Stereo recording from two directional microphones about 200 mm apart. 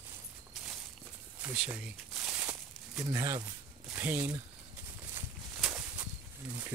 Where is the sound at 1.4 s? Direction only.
10° right (ahead or behind).